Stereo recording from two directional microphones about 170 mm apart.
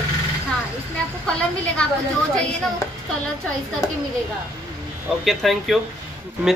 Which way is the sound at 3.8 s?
20° left (ahead or behind).